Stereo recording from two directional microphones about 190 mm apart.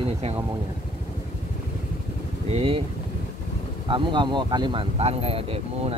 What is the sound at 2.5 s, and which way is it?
Speech, 30° right (ahead or behind).